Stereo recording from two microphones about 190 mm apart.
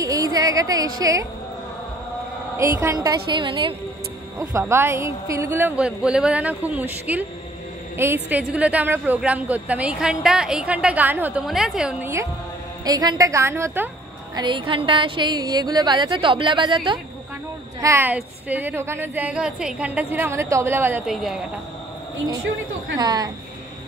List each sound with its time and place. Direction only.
0.0 s a sound: 20° right (ahead or behind)
2.8 s a woman's voice: 15° right (ahead or behind)
12.8 s speech: 20° right (ahead or behind)
14.3 s a woman's voice: 25° right (ahead or behind)
17.7 s speech: 15° right (ahead or behind)
21.1 s a woman's voice: centre (ahead or behind)
22.9 s a woman's voice: 20° right (ahead or behind)